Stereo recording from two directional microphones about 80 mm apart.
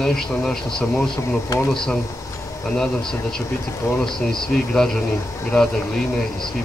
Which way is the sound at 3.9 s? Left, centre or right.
Centre.